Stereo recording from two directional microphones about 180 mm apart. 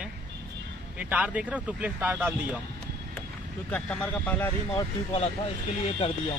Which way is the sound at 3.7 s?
5° left (ahead or behind).